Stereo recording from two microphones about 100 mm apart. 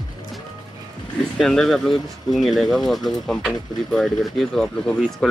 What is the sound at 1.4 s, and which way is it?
Speech, 5° left (ahead or behind).